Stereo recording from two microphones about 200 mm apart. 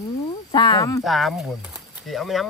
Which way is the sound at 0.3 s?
20° left (ahead or behind).